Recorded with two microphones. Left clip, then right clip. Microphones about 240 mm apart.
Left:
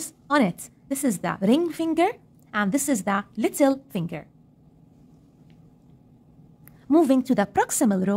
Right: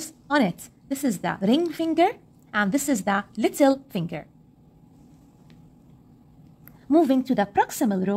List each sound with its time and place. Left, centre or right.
0.0 s a woman's voice: centre
6.9 s speech: centre